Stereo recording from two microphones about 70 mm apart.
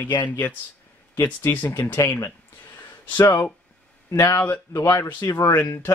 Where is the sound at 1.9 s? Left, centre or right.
Left.